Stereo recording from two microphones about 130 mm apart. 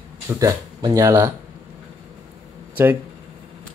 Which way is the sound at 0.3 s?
25° right (ahead or behind).